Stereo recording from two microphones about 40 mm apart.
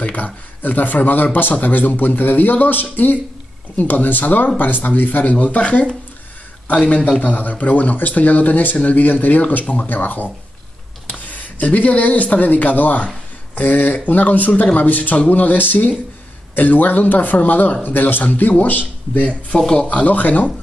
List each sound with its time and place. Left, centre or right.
0.0 s a man's voice: left
5.2 s speech: left
7.1 s a man's voice: left
19.6 s speech: centre
19.9 s a man's voice: left